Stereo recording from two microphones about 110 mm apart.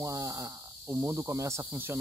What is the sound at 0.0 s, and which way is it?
Speech, 30° right (ahead or behind).